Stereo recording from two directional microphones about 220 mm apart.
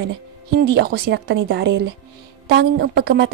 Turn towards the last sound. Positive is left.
turn(degrees=-50)  # may be behind; listen again after turning